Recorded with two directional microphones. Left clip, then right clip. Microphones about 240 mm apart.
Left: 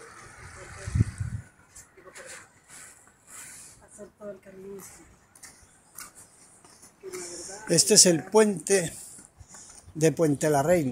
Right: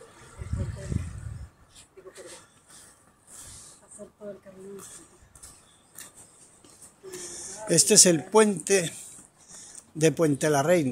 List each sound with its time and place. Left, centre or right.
7.2 s wheeze: centre
7.6 s speech: centre